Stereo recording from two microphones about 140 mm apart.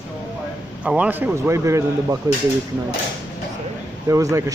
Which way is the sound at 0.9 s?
10° right (ahead or behind).